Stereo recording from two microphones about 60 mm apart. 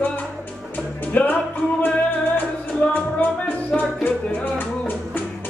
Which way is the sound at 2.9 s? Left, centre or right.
Left.